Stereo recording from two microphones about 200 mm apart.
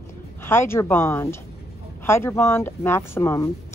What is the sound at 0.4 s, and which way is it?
A woman's voice, 10° left (ahead or behind).